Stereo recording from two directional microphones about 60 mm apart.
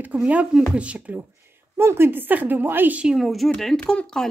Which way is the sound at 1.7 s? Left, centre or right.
Right.